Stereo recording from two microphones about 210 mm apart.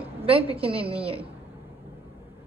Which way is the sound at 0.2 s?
25° right (ahead or behind).